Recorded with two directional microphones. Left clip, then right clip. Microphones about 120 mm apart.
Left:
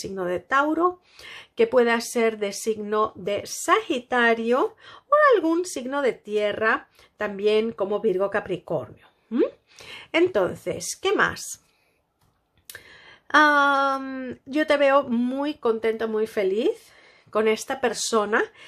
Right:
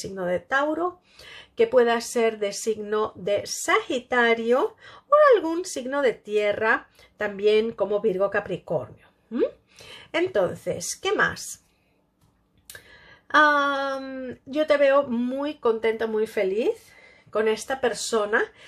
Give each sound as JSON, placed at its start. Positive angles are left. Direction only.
{"t": 0.0, "sound": "speech", "side_deg": 35}
{"t": 12.6, "sound": "speech", "side_deg": 35}